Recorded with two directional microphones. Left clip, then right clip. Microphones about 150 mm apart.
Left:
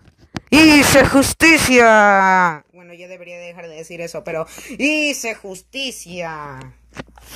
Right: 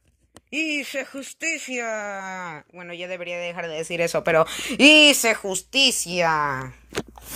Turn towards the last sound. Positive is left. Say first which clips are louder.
# right 7 dB
turn(degrees=0)  # may be behind; listen again after turning